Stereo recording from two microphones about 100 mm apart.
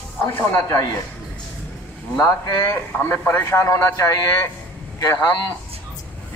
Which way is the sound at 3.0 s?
20° left (ahead or behind).